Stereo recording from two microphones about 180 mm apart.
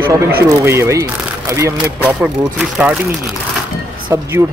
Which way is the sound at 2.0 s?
5° right (ahead or behind).